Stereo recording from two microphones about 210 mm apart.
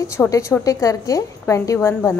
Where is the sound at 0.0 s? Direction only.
15° left (ahead or behind).